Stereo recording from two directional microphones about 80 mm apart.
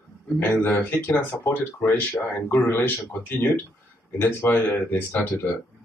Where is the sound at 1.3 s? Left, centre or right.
Left.